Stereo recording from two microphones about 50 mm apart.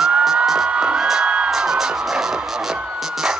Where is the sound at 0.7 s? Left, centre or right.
Right.